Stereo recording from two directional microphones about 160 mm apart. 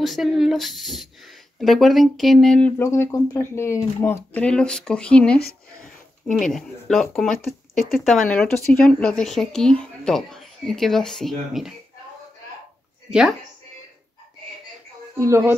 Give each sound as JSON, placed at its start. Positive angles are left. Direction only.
{"t": 0.0, "sound": "speech", "side_deg": 0}
{"t": 2.8, "sound": "speech", "side_deg": 15}
{"t": 6.5, "sound": "speech", "side_deg": 5}
{"t": 15.1, "sound": "speech", "side_deg": -15}